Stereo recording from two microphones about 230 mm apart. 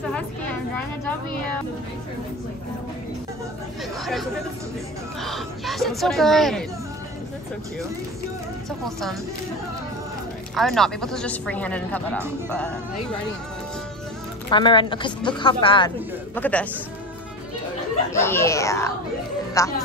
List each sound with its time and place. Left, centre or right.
4.0 s speech: centre
10.5 s speech: centre
14.5 s a woman's voice: left
16.3 s speech: centre
18.2 s speech: centre